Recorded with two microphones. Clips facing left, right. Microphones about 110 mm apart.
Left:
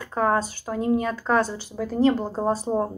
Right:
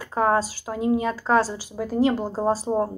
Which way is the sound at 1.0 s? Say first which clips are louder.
Right 1 dB; 5° right (ahead or behind).